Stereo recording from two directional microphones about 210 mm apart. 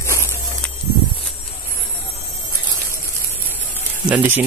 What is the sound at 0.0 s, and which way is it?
Vehicle, 15° left (ahead or behind).